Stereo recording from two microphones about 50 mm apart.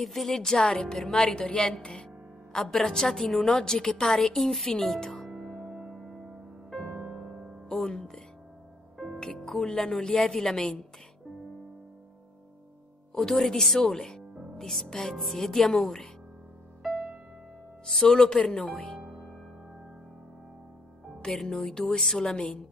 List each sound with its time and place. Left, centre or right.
0.0 s a woman's voice: centre
1.2 s a woman's voice: centre
5.3 s music: centre
5.6 s music: centre
5.9 s music: centre
8.9 s music: centre
10.0 s a woman's voice: centre
13.1 s a woman's voice: centre
15.1 s speech: centre
17.8 s a woman's voice: centre
18.6 s speech: centre
21.3 s a woman's voice: centre